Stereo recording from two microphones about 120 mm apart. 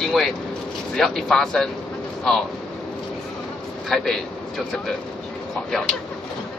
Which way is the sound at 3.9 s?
5° left (ahead or behind).